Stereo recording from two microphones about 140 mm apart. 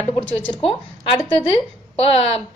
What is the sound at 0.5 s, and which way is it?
Speech, 45° left (ahead or behind).